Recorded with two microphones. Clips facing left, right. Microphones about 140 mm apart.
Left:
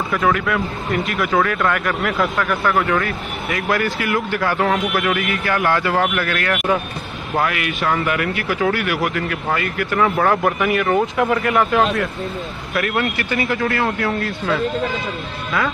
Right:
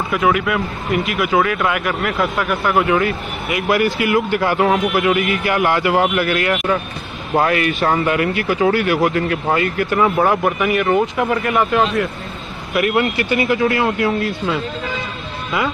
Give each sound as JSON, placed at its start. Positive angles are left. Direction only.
{"t": 0.1, "sound": "speech", "side_deg": -5}
{"t": 2.3, "sound": "speech", "side_deg": -15}
{"t": 7.3, "sound": "speech", "side_deg": -35}
{"t": 10.2, "sound": "speech", "side_deg": -5}
{"t": 12.7, "sound": "speech", "side_deg": -20}